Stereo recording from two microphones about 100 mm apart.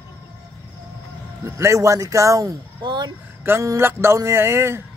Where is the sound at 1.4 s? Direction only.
30° right (ahead or behind); by 3.1 s 45° right (ahead or behind).